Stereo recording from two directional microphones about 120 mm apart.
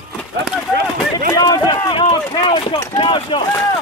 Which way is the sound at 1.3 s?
35° left (ahead or behind).